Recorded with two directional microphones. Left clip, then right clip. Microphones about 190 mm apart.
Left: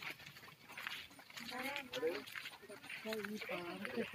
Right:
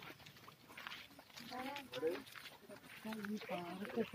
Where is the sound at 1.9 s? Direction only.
45° left (ahead or behind).